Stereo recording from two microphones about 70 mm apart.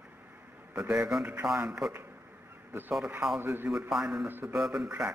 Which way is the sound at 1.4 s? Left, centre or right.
Centre.